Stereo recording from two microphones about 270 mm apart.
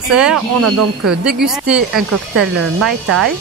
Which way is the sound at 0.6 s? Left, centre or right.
Right.